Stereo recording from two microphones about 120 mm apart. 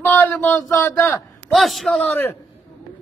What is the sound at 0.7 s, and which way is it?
Speech, 20° left (ahead or behind).